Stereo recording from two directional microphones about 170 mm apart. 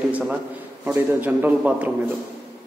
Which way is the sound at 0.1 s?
10° right (ahead or behind).